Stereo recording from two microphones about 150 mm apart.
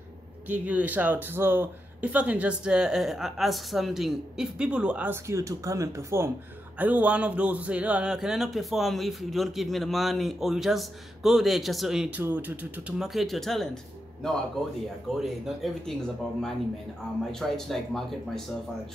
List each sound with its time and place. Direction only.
0.5 s a man's voice: 10° right (ahead or behind)
15.1 s a man's voice: centre (ahead or behind)